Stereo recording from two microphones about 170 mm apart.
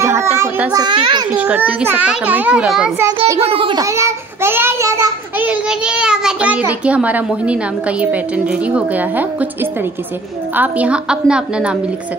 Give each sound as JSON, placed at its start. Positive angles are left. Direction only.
{"t": 0.0, "sound": "a child's voice", "side_deg": -15}
{"t": 0.7, "sound": "a child's voice", "side_deg": -25}
{"t": 1.3, "sound": "a child's voice", "side_deg": -10}
{"t": 3.5, "sound": "a child's voice", "side_deg": -30}
{"t": 3.8, "sound": "a child's voice", "side_deg": -15}
{"t": 10.5, "sound": "a child's voice", "side_deg": -10}